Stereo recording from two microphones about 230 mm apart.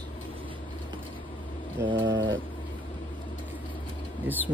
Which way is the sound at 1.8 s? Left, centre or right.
Right.